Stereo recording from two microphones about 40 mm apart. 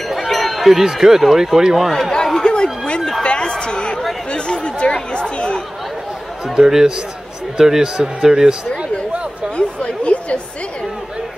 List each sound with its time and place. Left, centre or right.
0.1 s speech: centre
1.9 s speech: centre
2.1 s chatter: centre
2.4 s a sound: centre
3.3 s chatter: left
6.4 s a man's voice: centre
9.6 s a sound: left